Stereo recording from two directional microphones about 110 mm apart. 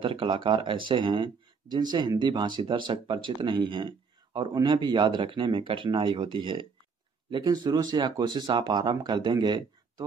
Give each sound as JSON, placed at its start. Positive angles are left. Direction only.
{"t": 0.0, "sound": "speech", "side_deg": -50}